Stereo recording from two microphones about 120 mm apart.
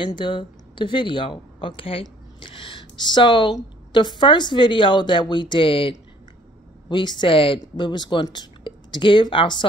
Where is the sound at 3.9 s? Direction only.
40° left (ahead or behind).